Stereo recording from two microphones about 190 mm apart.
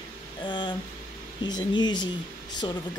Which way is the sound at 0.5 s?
25° left (ahead or behind).